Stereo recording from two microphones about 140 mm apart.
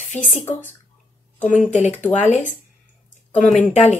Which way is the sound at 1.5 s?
60° left (ahead or behind).